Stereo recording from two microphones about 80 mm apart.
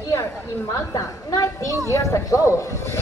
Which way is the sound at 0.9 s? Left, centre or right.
Left.